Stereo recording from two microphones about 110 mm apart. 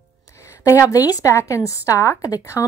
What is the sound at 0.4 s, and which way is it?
A woman's voice, 25° left (ahead or behind).